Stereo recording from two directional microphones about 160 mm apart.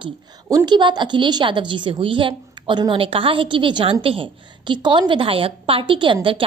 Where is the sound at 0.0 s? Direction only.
25° right (ahead or behind).